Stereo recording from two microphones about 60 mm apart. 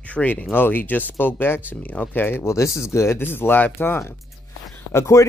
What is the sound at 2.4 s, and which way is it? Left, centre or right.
Speech, left.